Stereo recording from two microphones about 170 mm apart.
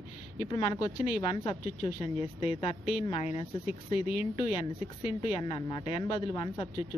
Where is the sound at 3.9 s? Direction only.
10° right (ahead or behind).